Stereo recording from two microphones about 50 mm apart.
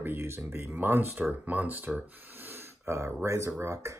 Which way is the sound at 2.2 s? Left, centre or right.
Right.